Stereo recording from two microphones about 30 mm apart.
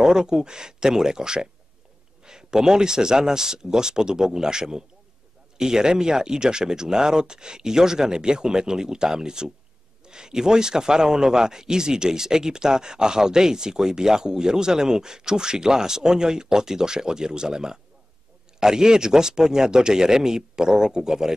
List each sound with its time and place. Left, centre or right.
0.0 s a man's voice: right